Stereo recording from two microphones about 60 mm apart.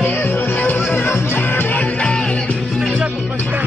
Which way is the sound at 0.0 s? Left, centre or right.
Left.